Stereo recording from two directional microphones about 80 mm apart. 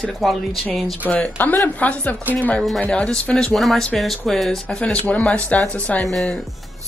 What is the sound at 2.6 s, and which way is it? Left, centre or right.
Speech, centre.